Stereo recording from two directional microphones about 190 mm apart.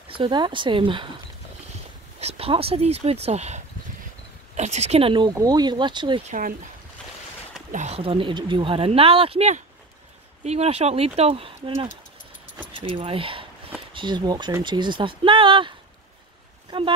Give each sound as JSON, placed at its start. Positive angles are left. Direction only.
{"t": 0.1, "sound": "speech", "side_deg": -25}
{"t": 2.1, "sound": "speech", "side_deg": -30}
{"t": 6.2, "sound": "speech", "side_deg": -45}
{"t": 7.7, "sound": "speech", "side_deg": -35}
{"t": 16.7, "sound": "speech", "side_deg": -25}